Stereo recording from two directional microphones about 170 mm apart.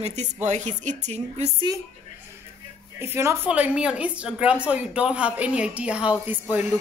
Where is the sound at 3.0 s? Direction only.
15° right (ahead or behind).